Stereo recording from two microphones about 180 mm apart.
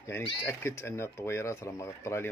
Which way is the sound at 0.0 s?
15° left (ahead or behind).